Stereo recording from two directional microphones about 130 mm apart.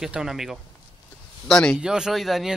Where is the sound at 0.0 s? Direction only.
5° right (ahead or behind).